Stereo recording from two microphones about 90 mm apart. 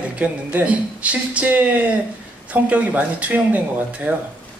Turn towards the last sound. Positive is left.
turn(degrees=-15)  # may be behind; listen again after turning